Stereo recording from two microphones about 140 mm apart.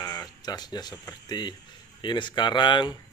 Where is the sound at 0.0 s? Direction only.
25° left (ahead or behind).